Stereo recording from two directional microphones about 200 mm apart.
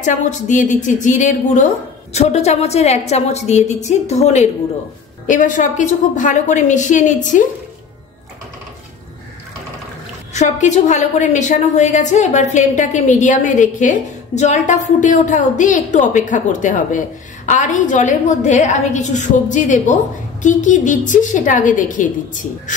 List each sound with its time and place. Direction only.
0.0 s a woman's voice: 40° left (ahead or behind)
10.3 s a woman's voice: 35° left (ahead or behind)